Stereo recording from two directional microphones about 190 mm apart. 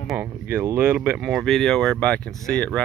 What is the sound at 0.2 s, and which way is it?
Speech, 10° right (ahead or behind).